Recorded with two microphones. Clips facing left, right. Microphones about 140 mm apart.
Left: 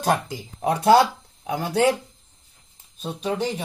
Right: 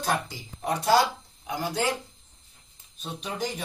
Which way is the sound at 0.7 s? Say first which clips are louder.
Left 6 dB; 55° left (ahead or behind).